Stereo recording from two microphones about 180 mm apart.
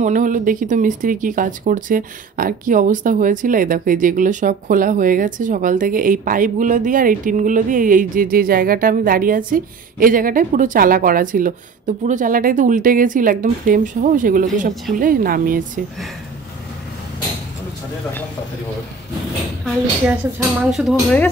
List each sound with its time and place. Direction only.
0.0 s speech: 45° right (ahead or behind)
20.7 s speech: centre (ahead or behind)